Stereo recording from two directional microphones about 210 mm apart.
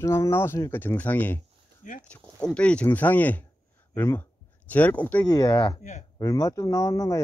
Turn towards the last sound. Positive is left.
turn(degrees=15)  # may be behind; listen again after turning